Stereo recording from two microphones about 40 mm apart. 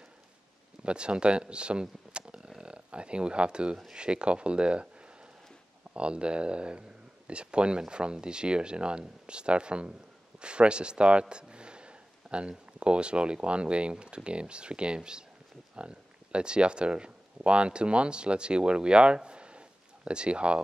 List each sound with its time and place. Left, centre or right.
0.8 s speech: right
5.9 s speech: right